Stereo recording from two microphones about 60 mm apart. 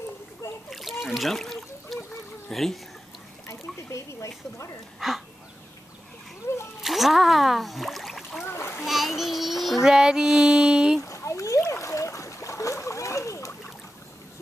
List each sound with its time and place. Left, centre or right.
0.7 s trickle: centre
2.5 s child singing: centre
3.4 s a sound: left
5.0 s child singing: centre
6.8 s speech: centre
8.5 s splash: left
8.8 s child singing: centre
9.9 s female singing: centre
11.0 s a sound: left
11.7 s splash: left